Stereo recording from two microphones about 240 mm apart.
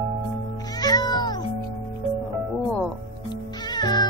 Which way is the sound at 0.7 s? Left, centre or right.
Centre.